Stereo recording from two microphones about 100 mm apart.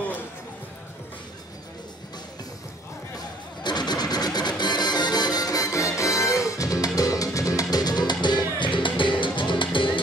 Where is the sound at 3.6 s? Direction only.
45° left (ahead or behind).